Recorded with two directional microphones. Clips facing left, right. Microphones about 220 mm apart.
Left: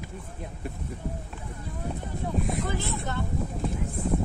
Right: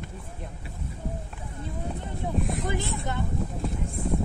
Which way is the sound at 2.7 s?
20° right (ahead or behind).